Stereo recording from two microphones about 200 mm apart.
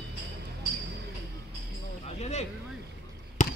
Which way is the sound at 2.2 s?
35° left (ahead or behind).